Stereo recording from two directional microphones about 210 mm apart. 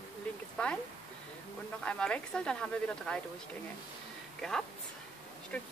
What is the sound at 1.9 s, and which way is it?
Speech, 5° left (ahead or behind).